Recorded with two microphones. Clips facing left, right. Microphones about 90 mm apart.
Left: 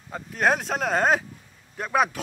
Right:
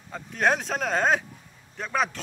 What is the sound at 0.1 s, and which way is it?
A man's voice, 5° left (ahead or behind).